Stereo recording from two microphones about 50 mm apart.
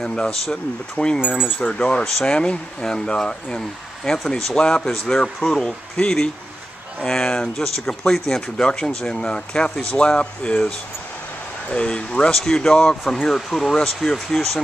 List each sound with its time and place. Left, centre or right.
0.0 s speech: centre
1.2 s speech: left
1.8 s speech: centre
11.7 s speech: centre